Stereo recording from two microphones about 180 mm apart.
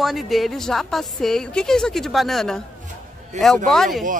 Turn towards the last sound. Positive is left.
turn(degrees=0)  # may be behind; listen again after turning